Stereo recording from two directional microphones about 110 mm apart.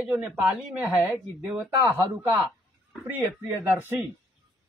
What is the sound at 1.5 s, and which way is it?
Speech, 15° right (ahead or behind).